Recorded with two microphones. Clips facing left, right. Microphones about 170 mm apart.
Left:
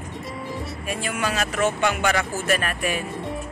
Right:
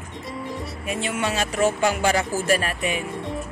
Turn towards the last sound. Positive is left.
turn(degrees=-25)  # may be behind; listen again after turning